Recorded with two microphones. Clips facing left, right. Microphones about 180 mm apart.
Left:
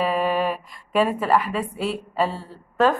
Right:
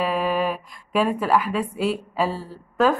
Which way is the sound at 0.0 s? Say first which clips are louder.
Left 1 dB; centre (ahead or behind).